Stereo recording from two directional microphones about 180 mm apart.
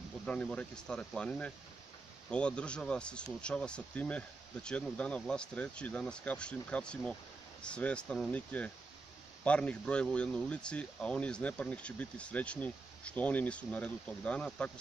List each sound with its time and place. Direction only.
0.2 s speech: 5° left (ahead or behind)